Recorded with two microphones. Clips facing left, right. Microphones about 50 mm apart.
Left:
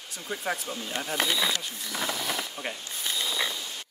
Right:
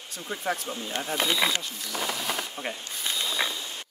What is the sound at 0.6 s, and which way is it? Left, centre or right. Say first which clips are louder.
Speech: right 1 dB; right.